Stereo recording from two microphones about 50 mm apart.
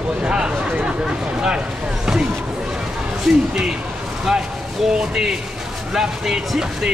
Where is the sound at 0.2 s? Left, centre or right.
Centre.